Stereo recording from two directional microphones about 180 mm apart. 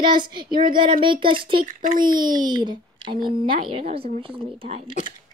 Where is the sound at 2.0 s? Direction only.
25° right (ahead or behind).